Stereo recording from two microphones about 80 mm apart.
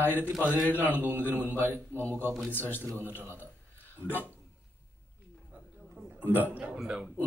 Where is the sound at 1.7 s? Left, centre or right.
Right.